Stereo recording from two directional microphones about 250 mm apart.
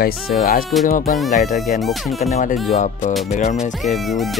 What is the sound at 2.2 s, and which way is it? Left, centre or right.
Speech, left.